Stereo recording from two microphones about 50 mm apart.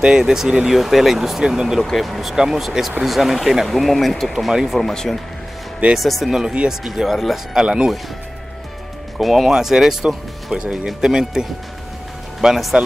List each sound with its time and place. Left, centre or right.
0.0 s speech: centre
7.6 s speech: centre
9.2 s speech: centre